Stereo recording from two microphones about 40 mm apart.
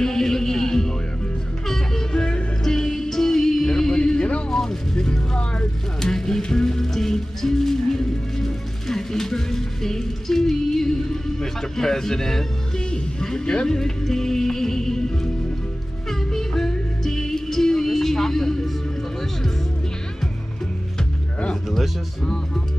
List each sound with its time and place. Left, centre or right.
0.0 s music: centre
2.1 s music: left
2.6 s music: centre
4.5 s vehicle: centre
5.9 s music: centre
21.6 s a sound: centre